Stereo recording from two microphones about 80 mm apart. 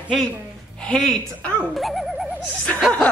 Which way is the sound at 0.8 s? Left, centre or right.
Centre.